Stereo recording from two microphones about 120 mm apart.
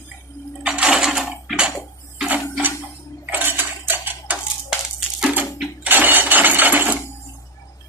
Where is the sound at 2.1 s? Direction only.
15° right (ahead or behind).